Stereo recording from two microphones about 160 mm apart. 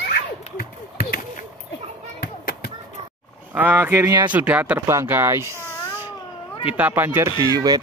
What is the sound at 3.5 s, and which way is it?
Speech, 10° right (ahead or behind).